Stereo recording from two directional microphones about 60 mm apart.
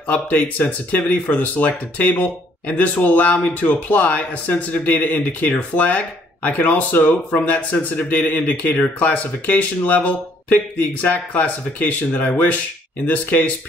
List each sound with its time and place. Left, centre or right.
0.0 s speech: left